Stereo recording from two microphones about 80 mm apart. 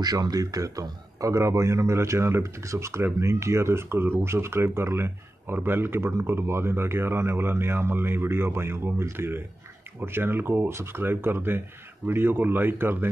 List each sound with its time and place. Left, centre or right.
0.0 s speech: right